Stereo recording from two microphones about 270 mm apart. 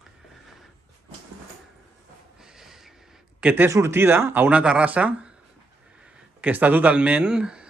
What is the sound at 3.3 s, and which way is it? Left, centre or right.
Speech, centre.